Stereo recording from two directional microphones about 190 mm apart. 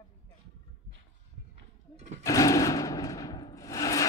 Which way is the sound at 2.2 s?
15° left (ahead or behind).